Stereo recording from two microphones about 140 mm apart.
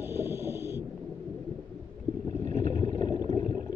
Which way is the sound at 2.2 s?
60° right (ahead or behind).